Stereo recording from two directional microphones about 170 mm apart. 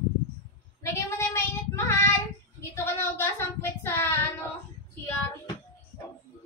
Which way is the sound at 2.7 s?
15° left (ahead or behind).